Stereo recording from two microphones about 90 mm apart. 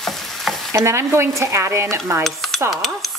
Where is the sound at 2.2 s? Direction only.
Centre (ahead or behind).